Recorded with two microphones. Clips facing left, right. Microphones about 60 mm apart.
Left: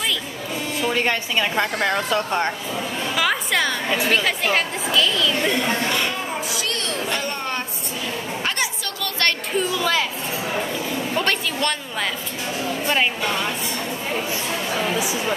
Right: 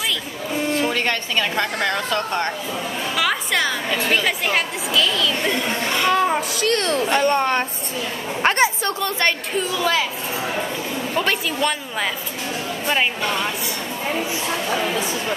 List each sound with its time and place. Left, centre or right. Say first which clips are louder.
0.9 s speech: even; centre
3.2 s music: even; centre
4.1 s a woman's voice: right 1 dB; centre
6.5 s speech: right 6 dB; right
8.4 s a sound: right 11 dB; right
9.6 s a woman's voice: even; centre
11.1 s a woman's voice: right 2 dB; centre
14.7 s speech: left 1 dB; centre